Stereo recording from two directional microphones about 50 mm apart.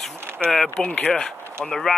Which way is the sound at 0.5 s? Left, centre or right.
Centre.